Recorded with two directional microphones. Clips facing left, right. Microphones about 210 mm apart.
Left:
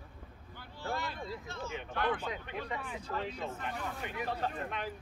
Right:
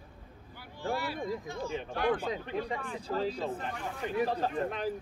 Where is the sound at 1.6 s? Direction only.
35° right (ahead or behind).